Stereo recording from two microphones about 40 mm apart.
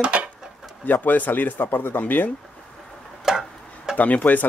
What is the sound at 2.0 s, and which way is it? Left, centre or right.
Speech, left.